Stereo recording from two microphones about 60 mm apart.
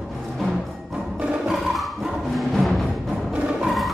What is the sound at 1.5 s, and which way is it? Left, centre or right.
Music, centre.